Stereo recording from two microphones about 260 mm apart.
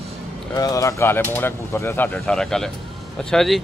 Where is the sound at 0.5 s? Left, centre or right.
Centre.